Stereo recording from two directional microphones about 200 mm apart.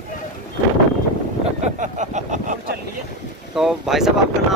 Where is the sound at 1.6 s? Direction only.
35° right (ahead or behind).